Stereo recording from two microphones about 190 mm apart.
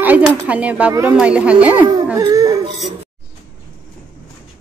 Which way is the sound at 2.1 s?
20° right (ahead or behind).